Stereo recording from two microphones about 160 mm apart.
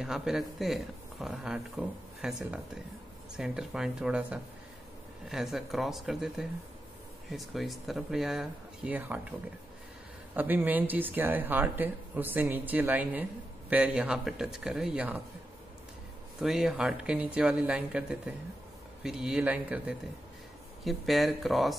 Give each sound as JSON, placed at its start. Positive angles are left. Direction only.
{"t": 0.0, "sound": "speech", "side_deg": -5}
{"t": 10.3, "sound": "speech", "side_deg": -10}
{"t": 16.3, "sound": "speech", "side_deg": 0}